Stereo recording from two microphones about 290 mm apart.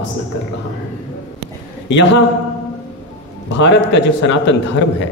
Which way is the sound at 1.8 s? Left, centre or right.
Left.